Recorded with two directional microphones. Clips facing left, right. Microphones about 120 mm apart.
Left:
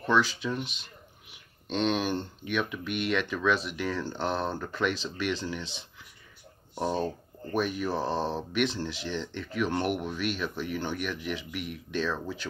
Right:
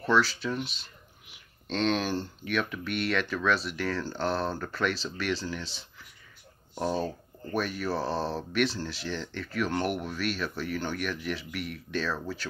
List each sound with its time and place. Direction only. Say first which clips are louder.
0.0 s speech: even; 15° left (ahead or behind)